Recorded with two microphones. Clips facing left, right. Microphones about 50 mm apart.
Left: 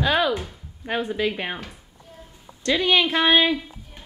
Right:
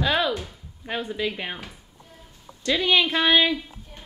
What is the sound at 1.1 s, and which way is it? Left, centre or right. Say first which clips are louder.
Speech: left 3 dB; centre.